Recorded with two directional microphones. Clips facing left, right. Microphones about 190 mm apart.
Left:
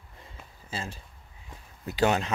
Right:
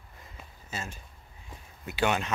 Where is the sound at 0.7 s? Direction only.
30° left (ahead or behind).